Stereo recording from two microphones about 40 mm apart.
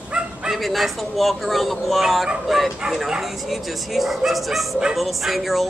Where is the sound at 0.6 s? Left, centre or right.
Centre.